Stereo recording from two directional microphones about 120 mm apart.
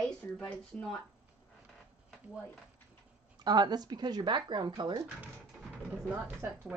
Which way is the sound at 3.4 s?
35° right (ahead or behind).